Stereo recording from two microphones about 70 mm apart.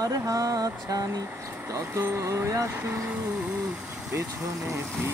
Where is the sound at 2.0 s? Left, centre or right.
Right.